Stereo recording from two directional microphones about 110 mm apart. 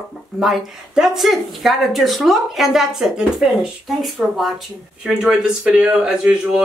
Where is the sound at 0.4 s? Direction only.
Centre (ahead or behind).